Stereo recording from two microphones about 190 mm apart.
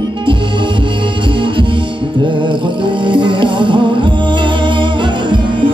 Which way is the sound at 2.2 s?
25° right (ahead or behind).